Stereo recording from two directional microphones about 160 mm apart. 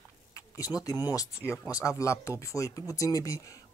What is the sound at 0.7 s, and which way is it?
Speech, 15° left (ahead or behind).